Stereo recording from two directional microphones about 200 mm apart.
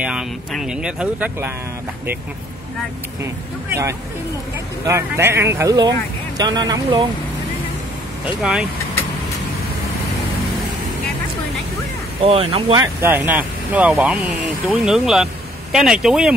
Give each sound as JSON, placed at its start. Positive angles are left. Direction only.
{"t": 0.0, "sound": "speech", "side_deg": -5}
{"t": 4.8, "sound": "speech", "side_deg": -15}
{"t": 8.4, "sound": "speech", "side_deg": -5}
{"t": 12.2, "sound": "speech", "side_deg": -30}